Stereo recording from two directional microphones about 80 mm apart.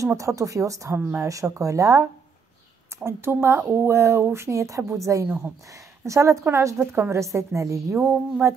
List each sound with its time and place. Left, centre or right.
0.0 s speech: right
3.0 s speech: right